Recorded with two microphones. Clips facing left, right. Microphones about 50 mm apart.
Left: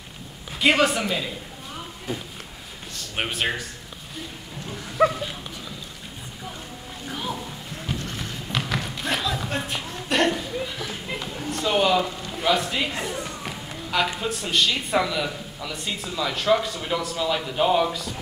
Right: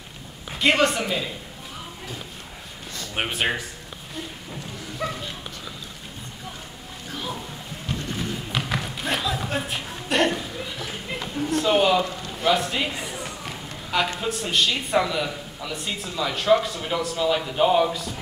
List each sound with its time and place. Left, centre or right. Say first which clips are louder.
0.5 s a man's voice: even; centre
3.2 s speech: right 1 dB; centre
5.0 s speech: left 10 dB; left
7.1 s music: left 2 dB; centre
8.2 s a sound: right 1 dB; centre
14.2 s speech: even; centre